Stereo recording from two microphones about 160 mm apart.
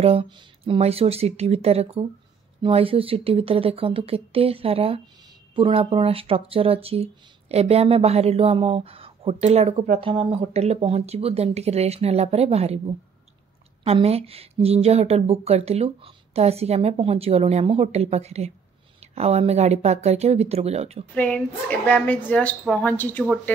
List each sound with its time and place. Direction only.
0.0 s speech: 35° right (ahead or behind)
21.1 s speech: 10° left (ahead or behind)